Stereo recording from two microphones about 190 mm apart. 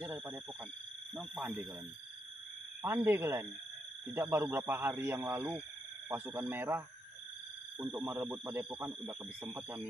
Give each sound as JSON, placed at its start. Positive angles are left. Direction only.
{"t": 0.0, "sound": "a sound", "side_deg": -10}
{"t": 1.3, "sound": "speech", "side_deg": 0}
{"t": 2.8, "sound": "speech", "side_deg": -10}
{"t": 7.8, "sound": "speech", "side_deg": -10}